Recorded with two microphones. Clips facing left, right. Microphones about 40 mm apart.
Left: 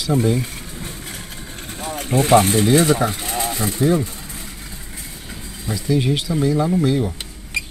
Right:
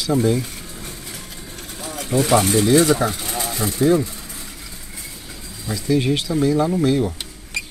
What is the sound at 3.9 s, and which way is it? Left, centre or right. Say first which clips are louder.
Vehicle: right 1 dB; left.